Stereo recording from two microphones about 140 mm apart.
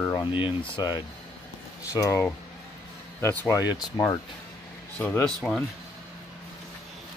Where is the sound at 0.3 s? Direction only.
40° left (ahead or behind).